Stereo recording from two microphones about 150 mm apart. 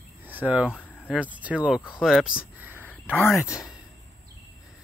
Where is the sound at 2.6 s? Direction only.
15° right (ahead or behind).